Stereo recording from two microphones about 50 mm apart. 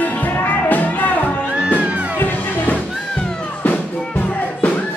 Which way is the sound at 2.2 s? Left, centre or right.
Left.